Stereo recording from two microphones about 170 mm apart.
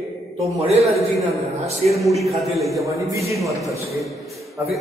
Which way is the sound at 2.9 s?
15° right (ahead or behind).